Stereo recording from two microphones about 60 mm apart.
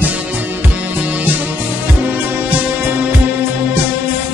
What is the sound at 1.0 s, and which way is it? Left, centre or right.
Music, right.